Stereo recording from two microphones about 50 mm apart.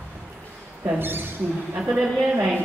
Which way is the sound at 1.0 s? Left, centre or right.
Right.